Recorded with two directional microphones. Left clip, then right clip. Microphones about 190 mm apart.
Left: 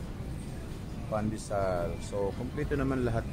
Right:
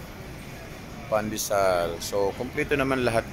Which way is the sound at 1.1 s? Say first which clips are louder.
Right 8 dB; 20° right (ahead or behind).